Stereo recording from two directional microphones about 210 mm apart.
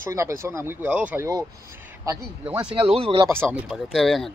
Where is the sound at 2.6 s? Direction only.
25° right (ahead or behind).